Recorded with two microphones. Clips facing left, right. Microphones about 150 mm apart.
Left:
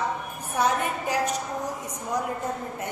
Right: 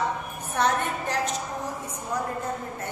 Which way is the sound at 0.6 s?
10° left (ahead or behind).